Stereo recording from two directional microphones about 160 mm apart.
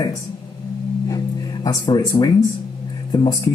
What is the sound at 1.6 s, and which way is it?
Speech, 25° left (ahead or behind).